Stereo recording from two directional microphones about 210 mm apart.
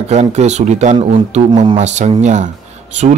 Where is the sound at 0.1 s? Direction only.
30° right (ahead or behind).